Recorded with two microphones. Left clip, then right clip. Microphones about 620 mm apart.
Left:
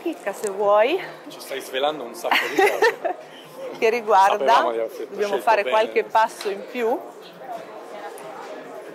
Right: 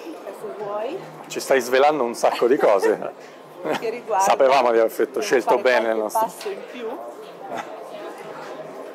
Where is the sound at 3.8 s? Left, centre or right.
Left.